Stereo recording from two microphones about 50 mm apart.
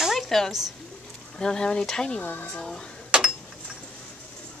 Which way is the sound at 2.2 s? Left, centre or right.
Left.